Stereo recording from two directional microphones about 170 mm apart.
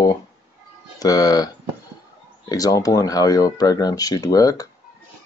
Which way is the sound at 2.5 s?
20° left (ahead or behind).